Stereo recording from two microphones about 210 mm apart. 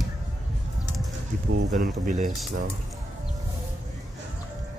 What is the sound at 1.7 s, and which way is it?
Speech, 40° right (ahead or behind).